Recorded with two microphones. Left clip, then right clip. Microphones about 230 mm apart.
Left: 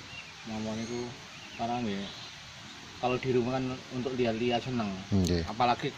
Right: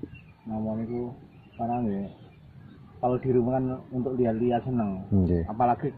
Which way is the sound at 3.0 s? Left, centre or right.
Centre.